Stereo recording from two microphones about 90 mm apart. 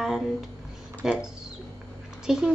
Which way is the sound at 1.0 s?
5° right (ahead or behind).